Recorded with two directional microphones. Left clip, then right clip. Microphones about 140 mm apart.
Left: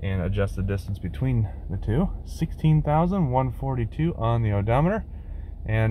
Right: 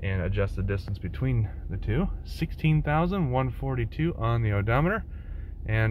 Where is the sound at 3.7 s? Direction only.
5° left (ahead or behind).